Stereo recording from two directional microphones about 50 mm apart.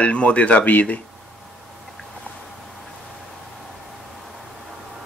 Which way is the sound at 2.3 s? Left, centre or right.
Left.